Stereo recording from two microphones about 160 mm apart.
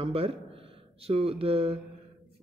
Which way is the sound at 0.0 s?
35° right (ahead or behind).